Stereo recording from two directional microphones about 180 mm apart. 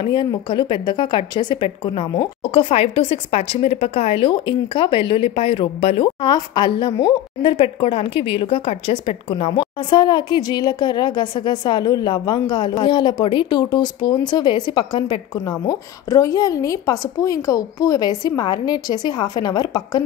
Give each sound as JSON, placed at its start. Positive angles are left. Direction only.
{"t": 0.0, "sound": "a woman's voice", "side_deg": 25}